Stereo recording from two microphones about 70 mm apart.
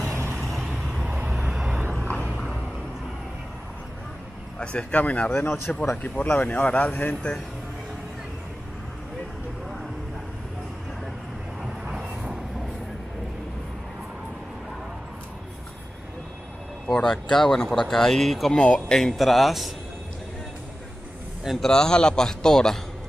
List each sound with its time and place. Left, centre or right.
0.1 s vehicle: right
0.4 s vehicle: centre
0.7 s vehicle: centre
1.0 s vehicle: right
1.3 s vehicle: centre
2.0 s vehicle: centre
4.6 s speech: centre
5.4 s speech: left
11.8 s vehicle: centre
16.8 s speech: centre
18.6 s speech: centre
19.1 s a man's voice: centre
21.5 s speech: centre